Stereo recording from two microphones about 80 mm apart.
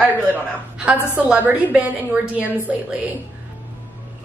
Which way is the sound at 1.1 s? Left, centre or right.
Centre.